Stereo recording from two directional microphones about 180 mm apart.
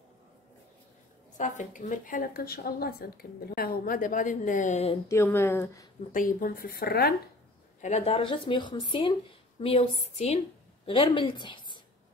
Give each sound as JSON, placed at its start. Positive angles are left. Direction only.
{"t": 1.4, "sound": "a woman's voice", "side_deg": 45}
{"t": 5.0, "sound": "speech", "side_deg": 15}
{"t": 6.1, "sound": "a woman's voice", "side_deg": 50}
{"t": 7.8, "sound": "a woman's voice", "side_deg": 35}